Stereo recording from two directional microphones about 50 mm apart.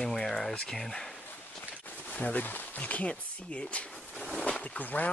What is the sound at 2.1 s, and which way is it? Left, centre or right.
Speech, left.